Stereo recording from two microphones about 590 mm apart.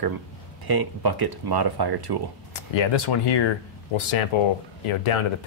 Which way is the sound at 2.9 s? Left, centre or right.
Left.